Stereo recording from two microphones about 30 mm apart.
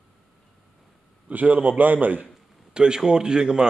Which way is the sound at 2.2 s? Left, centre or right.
Right.